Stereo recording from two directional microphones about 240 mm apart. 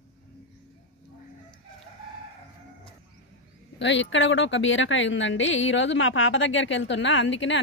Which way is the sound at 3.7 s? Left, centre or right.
Left.